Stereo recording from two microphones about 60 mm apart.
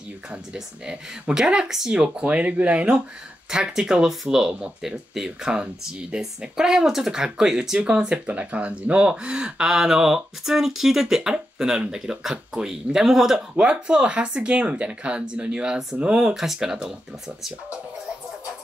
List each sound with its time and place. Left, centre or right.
0.8 s speech: centre
16.3 s speech: centre